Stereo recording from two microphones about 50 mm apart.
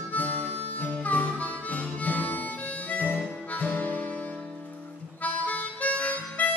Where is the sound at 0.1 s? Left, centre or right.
Left.